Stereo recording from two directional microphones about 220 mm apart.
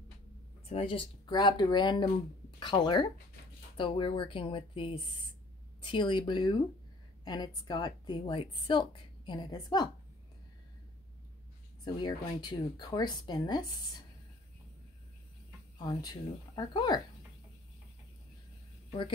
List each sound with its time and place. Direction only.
0.7 s a woman's voice: 25° left (ahead or behind)
11.8 s a woman's voice: 20° left (ahead or behind)
15.8 s a woman's voice: 20° left (ahead or behind)